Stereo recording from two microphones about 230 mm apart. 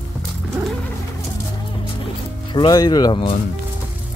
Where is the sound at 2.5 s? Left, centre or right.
Centre.